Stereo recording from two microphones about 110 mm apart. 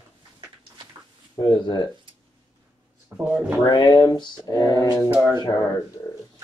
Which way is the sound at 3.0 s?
15° right (ahead or behind).